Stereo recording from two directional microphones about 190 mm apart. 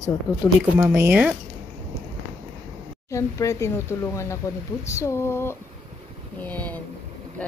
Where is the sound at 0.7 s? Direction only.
10° right (ahead or behind).